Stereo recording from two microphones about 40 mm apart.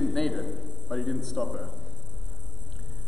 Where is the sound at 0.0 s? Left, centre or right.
Centre.